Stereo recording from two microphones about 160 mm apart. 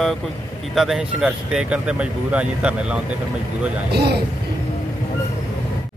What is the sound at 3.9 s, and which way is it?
Speech, 90° right.